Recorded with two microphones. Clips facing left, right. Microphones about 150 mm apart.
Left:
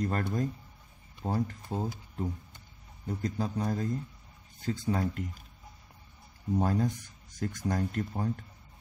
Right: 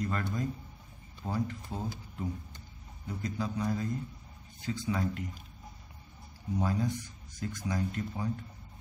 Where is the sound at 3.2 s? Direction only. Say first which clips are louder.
Left 1 dB; 45° left (ahead or behind).